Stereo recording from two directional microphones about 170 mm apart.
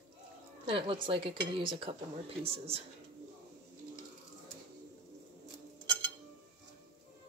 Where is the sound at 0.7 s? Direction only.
30° right (ahead or behind).